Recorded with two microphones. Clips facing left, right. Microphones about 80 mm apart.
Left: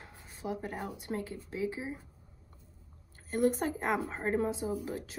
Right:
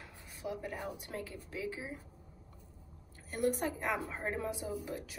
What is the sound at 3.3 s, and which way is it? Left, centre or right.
A woman's voice, left.